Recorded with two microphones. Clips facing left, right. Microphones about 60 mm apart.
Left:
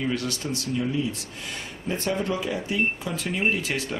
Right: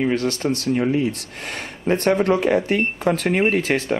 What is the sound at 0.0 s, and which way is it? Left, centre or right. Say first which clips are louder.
Speech: right 7 dB; right.